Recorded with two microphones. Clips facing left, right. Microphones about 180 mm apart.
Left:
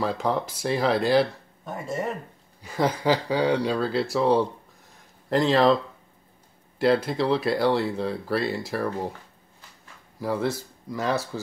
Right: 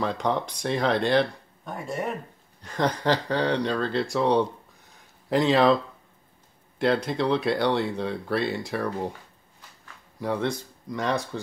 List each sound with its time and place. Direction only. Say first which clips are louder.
0.0 s speech: left 1 dB; 5° left (ahead or behind)
6.8 s speech: left 2 dB; centre (ahead or behind)
10.1 s speech: left 1 dB; centre (ahead or behind)